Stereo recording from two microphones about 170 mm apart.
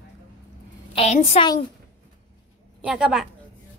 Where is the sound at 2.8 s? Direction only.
5° right (ahead or behind).